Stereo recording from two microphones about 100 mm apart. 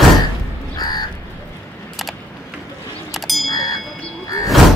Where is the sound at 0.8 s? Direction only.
45° left (ahead or behind).